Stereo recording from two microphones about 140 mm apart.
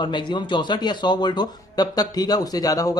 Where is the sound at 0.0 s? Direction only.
35° left (ahead or behind).